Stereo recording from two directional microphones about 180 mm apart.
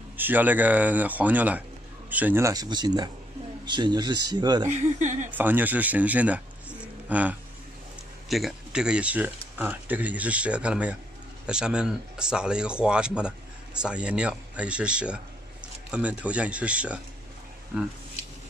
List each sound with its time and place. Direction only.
0.2 s speech: 10° right (ahead or behind)
4.6 s speech: 40° right (ahead or behind)
5.3 s speech: 10° right (ahead or behind)